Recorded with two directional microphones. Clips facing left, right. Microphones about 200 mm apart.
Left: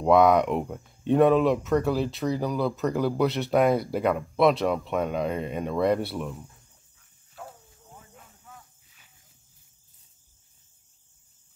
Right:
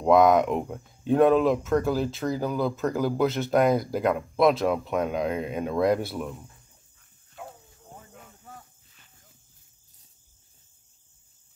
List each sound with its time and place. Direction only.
0.0 s speech: centre (ahead or behind)
7.0 s dog: centre (ahead or behind)
8.5 s snake: 35° right (ahead or behind)